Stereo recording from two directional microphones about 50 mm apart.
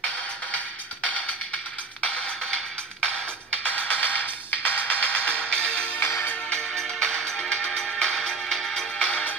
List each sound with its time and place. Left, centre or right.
2.0 s music: left
3.6 s music: left
5.9 s music: left
6.7 s music: centre
8.7 s music: centre